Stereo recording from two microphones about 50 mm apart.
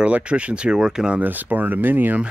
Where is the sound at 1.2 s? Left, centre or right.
Right.